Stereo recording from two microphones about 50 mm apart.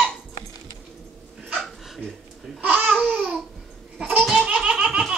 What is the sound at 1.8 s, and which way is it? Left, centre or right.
Dog, centre.